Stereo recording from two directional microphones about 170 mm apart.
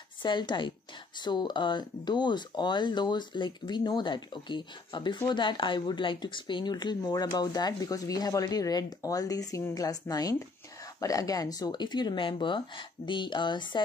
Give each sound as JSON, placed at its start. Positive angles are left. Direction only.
{"t": 0.2, "sound": "speech", "side_deg": 25}